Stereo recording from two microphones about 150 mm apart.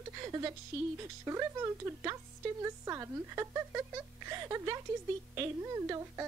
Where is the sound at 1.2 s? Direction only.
20° right (ahead or behind).